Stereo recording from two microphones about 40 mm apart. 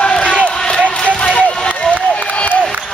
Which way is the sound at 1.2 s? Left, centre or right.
Left.